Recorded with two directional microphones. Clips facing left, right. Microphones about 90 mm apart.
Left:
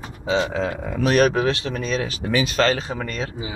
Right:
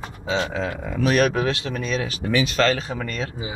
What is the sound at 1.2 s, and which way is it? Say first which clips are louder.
Speech: left 2 dB; 5° left (ahead or behind).